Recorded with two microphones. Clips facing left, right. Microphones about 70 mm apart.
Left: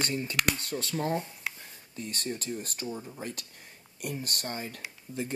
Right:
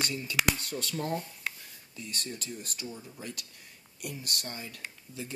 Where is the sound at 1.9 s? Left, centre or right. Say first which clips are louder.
Left 4 dB; left.